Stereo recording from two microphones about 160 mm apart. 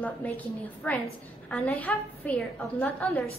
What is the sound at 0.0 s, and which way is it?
A woman's voice, 10° left (ahead or behind).